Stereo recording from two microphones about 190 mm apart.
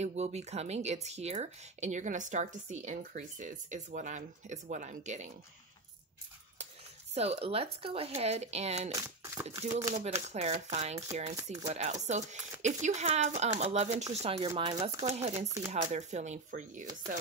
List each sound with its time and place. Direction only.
0.0 s speech: 35° right (ahead or behind)
7.2 s speech: 35° right (ahead or behind)
8.9 s speech: 15° right (ahead or behind)
9.5 s speech: 35° right (ahead or behind)